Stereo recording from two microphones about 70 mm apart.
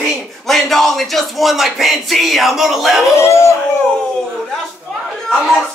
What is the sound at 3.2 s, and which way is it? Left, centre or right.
Howl, left.